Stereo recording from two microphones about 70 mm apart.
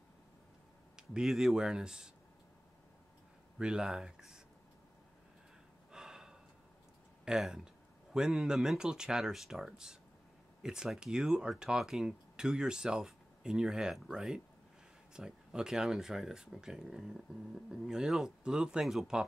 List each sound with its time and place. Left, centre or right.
0.9 s speech: centre
3.5 s speech: centre
5.9 s gasp: centre
7.2 s speech: centre